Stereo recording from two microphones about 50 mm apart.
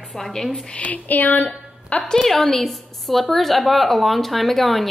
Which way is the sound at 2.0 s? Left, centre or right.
Centre.